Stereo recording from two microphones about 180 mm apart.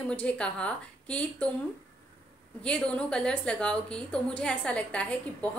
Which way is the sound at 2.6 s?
5° left (ahead or behind).